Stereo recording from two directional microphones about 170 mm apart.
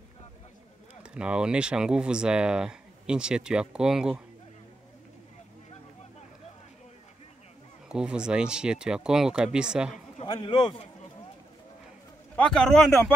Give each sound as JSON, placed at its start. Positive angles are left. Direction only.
{"t": 1.0, "sound": "speech", "side_deg": -5}
{"t": 7.9, "sound": "speech", "side_deg": -5}
{"t": 10.2, "sound": "speech", "side_deg": 25}
{"t": 12.4, "sound": "speech", "side_deg": 5}